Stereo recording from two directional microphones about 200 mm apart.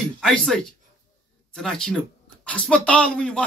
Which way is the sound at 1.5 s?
Centre (ahead or behind).